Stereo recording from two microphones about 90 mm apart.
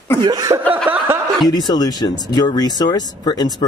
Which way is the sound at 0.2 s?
50° right (ahead or behind).